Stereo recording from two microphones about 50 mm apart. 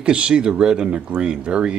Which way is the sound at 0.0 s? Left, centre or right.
Centre.